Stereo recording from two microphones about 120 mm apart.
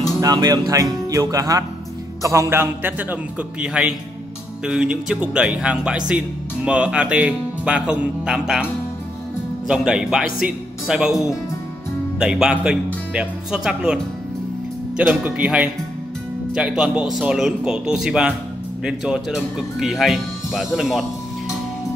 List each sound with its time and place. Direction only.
0.2 s a man's voice: 30° right (ahead or behind); by 8.6 s 5° right (ahead or behind)
9.7 s speech: 5° right (ahead or behind)
15.0 s speech: 15° right (ahead or behind)